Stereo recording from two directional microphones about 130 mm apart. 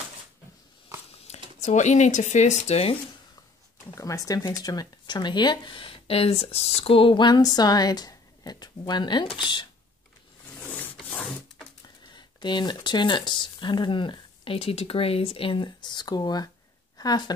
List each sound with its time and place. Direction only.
1.2 s speech: 60° left (ahead or behind)
3.9 s speech: 25° left (ahead or behind)
10.6 s filing: 10° left (ahead or behind)
12.2 s speech: 35° left (ahead or behind)